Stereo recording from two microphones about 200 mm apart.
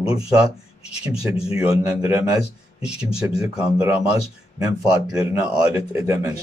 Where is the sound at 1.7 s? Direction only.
15° right (ahead or behind).